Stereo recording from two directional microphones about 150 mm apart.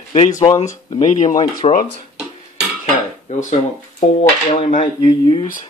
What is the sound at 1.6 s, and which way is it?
Speech, 40° left (ahead or behind).